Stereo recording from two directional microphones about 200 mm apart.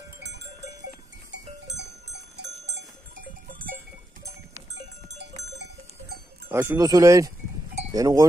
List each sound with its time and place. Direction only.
1.3 s livestock: 60° right (ahead or behind)
5.5 s livestock: 60° right (ahead or behind)
6.5 s speech: 10° right (ahead or behind)